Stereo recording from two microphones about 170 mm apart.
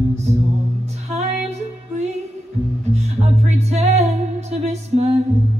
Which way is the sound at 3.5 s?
40° right (ahead or behind).